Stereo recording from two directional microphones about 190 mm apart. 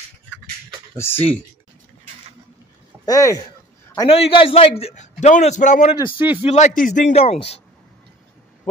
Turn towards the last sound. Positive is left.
turn(degrees=30)  # may be behind; listen again after turning